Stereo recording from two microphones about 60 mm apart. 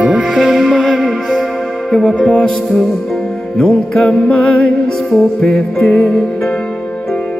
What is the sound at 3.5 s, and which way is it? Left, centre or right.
Music, centre.